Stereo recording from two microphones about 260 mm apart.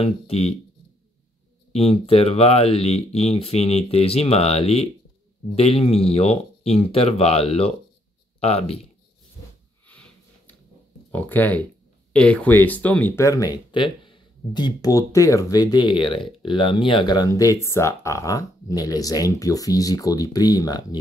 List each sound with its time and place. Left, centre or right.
0.0 s speech: left
1.7 s speech: left
9.8 s snort: centre
11.1 s speech: centre